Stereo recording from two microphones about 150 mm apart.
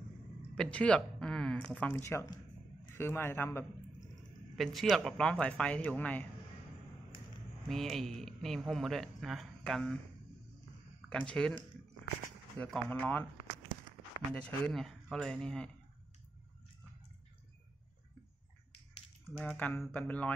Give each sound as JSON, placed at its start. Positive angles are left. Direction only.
{"t": 0.6, "sound": "speech", "side_deg": 10}
{"t": 4.6, "sound": "speech", "side_deg": 0}
{"t": 7.6, "sound": "speech", "side_deg": 0}
{"t": 11.1, "sound": "speech", "side_deg": 5}
{"t": 12.6, "sound": "speech", "side_deg": 5}
{"t": 14.3, "sound": "speech", "side_deg": 5}
{"t": 19.3, "sound": "speech", "side_deg": 5}